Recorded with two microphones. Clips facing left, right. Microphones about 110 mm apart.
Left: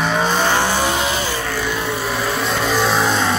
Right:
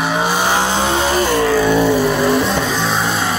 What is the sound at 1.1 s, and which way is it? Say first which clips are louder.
Music: right 7 dB; 50° right (ahead or behind).